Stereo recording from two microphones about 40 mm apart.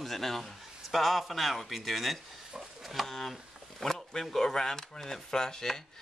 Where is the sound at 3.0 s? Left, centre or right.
Centre.